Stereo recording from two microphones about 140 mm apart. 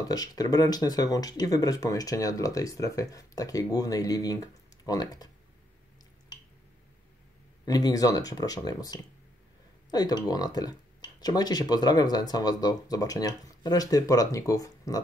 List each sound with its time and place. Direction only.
0.1 s speech: 25° left (ahead or behind)
7.6 s speech: 25° left (ahead or behind)